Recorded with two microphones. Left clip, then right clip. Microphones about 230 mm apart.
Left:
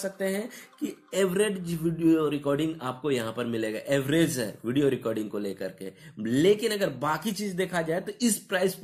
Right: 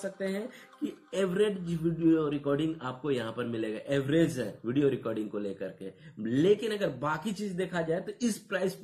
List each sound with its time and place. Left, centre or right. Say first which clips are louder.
0.0 s speech: left 4 dB; left